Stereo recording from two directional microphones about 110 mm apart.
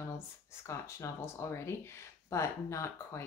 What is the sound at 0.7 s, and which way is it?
Speech, 25° left (ahead or behind).